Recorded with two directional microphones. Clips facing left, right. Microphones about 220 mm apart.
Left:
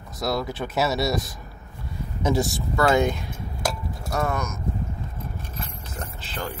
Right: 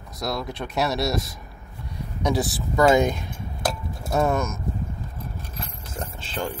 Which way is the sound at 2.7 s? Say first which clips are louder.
Right 3 dB; 15° right (ahead or behind).